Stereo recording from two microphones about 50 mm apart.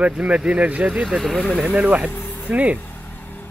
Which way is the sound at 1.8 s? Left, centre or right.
Right.